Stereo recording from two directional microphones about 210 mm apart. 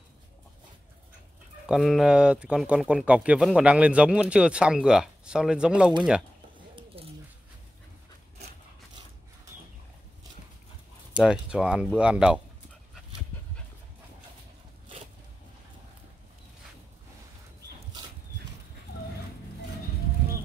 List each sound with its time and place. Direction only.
1.7 s speech: centre (ahead or behind)
7.0 s bird: 25° right (ahead or behind)
11.1 s speech: 5° right (ahead or behind)